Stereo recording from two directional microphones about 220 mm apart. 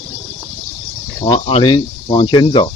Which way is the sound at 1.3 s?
25° left (ahead or behind).